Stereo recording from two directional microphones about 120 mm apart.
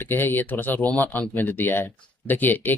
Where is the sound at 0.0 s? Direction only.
15° left (ahead or behind).